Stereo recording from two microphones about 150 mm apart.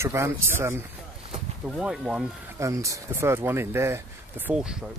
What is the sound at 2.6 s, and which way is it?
Speech, 20° right (ahead or behind).